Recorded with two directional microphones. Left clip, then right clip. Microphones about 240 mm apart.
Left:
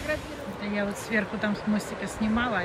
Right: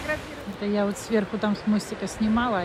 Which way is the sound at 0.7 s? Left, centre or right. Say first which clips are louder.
Right 3 dB; centre.